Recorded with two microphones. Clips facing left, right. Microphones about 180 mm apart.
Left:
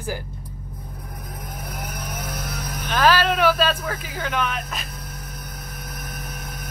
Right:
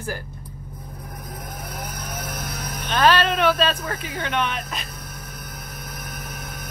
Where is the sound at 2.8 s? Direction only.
5° left (ahead or behind).